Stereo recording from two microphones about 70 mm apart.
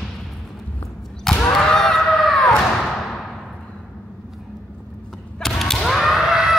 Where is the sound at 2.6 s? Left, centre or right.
Centre.